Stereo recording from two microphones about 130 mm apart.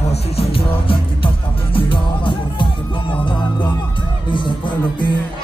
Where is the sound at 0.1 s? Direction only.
50° left (ahead or behind).